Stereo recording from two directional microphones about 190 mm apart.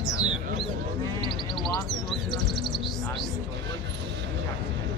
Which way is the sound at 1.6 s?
Centre (ahead or behind).